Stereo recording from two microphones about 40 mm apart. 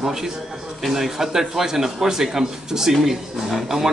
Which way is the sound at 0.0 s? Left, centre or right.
Centre.